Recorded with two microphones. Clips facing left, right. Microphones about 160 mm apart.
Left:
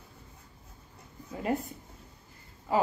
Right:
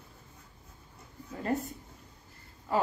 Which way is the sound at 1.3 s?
10° left (ahead or behind).